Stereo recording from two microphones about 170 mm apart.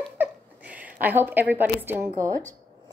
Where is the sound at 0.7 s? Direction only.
10° right (ahead or behind).